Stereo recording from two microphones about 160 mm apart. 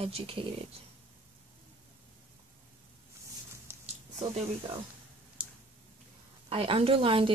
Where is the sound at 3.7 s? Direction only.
15° right (ahead or behind).